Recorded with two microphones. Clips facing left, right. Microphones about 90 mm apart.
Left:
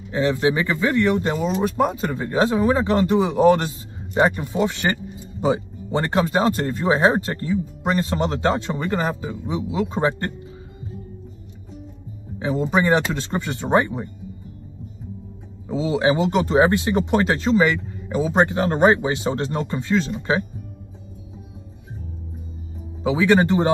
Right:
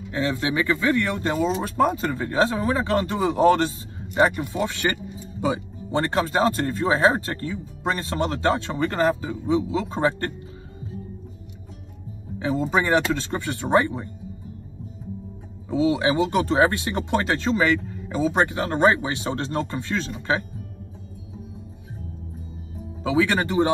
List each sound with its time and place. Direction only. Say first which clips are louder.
0.1 s speech: left 5 dB; 25° left (ahead or behind)
5.9 s a man's voice: left 2 dB; 20° left (ahead or behind)
12.4 s speech: left 3 dB; 20° left (ahead or behind)
15.7 s speech: left 1 dB; 25° left (ahead or behind)
23.0 s speech: left 4 dB; 25° left (ahead or behind)